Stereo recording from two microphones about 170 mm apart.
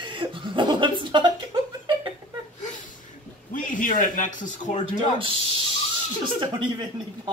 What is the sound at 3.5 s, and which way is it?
Speech, 50° left (ahead or behind).